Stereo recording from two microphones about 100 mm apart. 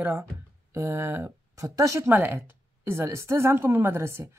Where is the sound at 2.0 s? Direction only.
25° right (ahead or behind).